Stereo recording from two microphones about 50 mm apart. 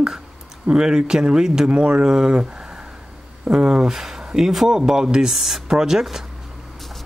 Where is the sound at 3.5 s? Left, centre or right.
Centre.